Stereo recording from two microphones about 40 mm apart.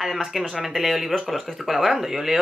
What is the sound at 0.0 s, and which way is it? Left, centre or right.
Speech, centre.